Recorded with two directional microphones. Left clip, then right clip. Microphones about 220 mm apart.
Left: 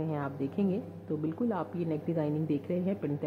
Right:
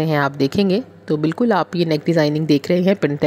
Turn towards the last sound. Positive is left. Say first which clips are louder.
# right 17 dB
turn(degrees=-45)  # may be behind; listen again after turning